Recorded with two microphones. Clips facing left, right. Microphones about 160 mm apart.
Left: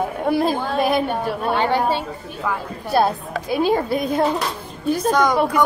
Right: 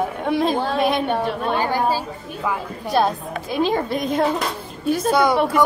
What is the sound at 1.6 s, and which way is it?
Speech, 25° left (ahead or behind).